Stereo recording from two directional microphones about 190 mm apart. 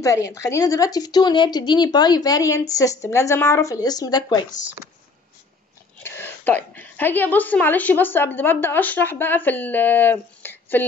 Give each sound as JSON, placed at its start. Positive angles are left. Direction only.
{"t": 0.0, "sound": "a woman's voice", "side_deg": 15}
{"t": 6.0, "sound": "a woman's voice", "side_deg": 10}